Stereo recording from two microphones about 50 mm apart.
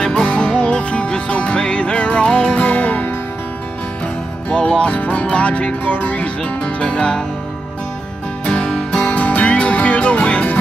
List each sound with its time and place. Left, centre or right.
0.0 s music: left
4.5 s music: left
8.5 s music: centre